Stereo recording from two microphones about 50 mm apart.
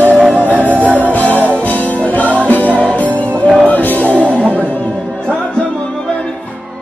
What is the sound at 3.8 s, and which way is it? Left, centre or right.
Music, left.